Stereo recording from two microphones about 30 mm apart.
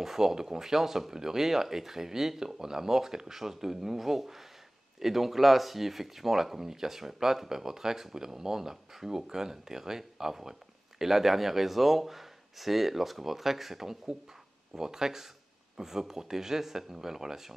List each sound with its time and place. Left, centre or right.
0.0 s speech: centre